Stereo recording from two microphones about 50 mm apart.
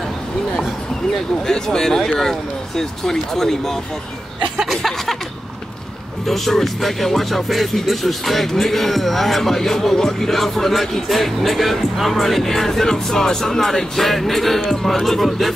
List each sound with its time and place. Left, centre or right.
1.1 s speech: centre
6.2 s speech: centre